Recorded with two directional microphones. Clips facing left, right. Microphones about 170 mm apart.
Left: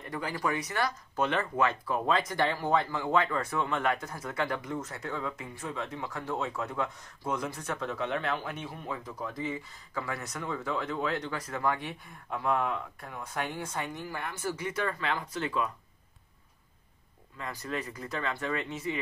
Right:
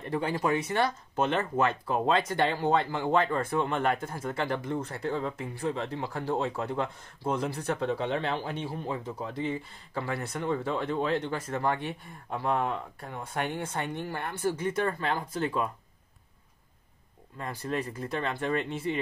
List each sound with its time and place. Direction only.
0.1 s speech: 25° right (ahead or behind)
14.6 s speech: 50° right (ahead or behind)
14.9 s speech: 35° right (ahead or behind)
17.5 s speech: 30° right (ahead or behind)
18.6 s speech: 55° right (ahead or behind)